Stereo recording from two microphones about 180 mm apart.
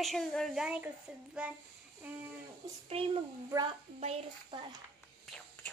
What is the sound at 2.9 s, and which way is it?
A child's voice, 30° right (ahead or behind).